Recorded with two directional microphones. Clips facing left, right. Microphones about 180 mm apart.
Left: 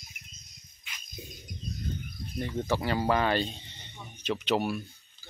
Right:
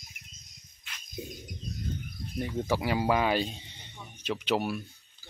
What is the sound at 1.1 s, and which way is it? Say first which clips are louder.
Music: right 7 dB; 15° right (ahead or behind).